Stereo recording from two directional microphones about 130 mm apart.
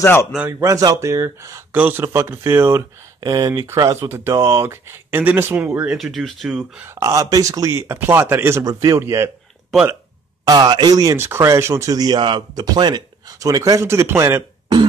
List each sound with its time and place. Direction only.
0.0 s a man's voice: 20° left (ahead or behind)
0.6 s speech: 25° right (ahead or behind)
1.7 s speech: 15° right (ahead or behind)
6.1 s speech: centre (ahead or behind)
7.0 s speech: 25° right (ahead or behind)
10.4 s speech: 35° right (ahead or behind)